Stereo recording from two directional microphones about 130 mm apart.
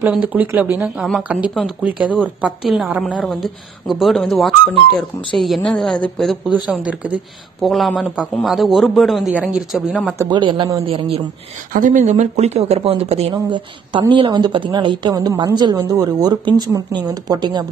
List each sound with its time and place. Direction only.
0.0 s a man's voice: 10° right (ahead or behind)
3.0 s a man's voice: 10° left (ahead or behind)
6.5 s speech: 10° right (ahead or behind)
7.6 s a man's voice: centre (ahead or behind)
10.3 s a woman's voice: 35° right (ahead or behind)
11.7 s speech: 80° right; by 13.3 s 50° right (ahead or behind)
13.3 s a woman's voice: 35° right (ahead or behind)